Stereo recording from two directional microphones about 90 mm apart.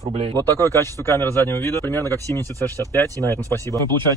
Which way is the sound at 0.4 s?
25° left (ahead or behind).